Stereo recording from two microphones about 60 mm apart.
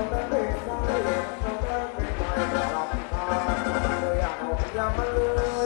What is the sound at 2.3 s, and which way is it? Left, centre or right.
Music, centre.